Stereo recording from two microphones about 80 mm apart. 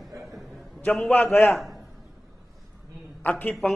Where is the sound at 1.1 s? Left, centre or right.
Left.